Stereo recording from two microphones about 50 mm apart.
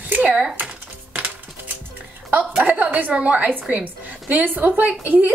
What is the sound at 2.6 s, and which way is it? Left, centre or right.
A woman's voice, right.